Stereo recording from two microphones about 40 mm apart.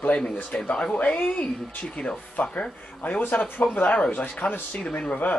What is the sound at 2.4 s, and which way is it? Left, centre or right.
Speech, left.